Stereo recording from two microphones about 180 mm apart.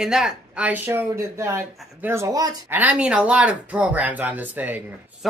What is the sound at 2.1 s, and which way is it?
Speech, 15° right (ahead or behind).